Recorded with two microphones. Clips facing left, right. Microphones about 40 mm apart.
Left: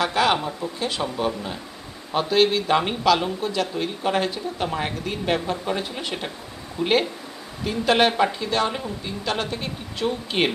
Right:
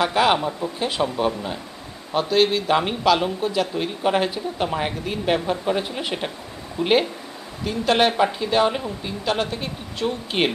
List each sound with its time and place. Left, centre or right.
0.0 s a man's voice: centre
7.6 s speech: centre